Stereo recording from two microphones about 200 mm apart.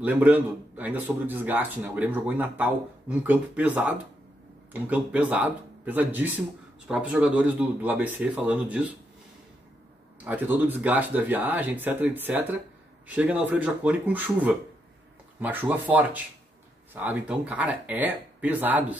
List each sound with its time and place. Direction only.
0.0 s a man's voice: 10° right (ahead or behind)
10.2 s a man's voice: 10° right (ahead or behind)